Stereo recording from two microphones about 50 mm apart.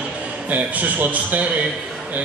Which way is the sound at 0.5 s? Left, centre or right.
Right.